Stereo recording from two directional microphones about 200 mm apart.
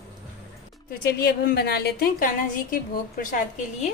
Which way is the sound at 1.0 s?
50° left (ahead or behind).